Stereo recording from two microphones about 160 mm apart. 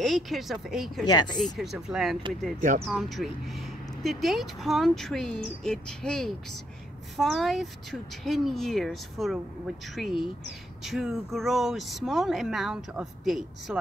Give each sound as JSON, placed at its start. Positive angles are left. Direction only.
{"t": 0.0, "sound": "speech", "side_deg": 0}
{"t": 1.0, "sound": "speech", "side_deg": 25}
{"t": 1.4, "sound": "speech", "side_deg": 0}